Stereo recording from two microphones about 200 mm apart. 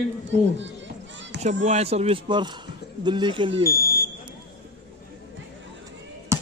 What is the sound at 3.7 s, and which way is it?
Smoke detector, 45° left (ahead or behind).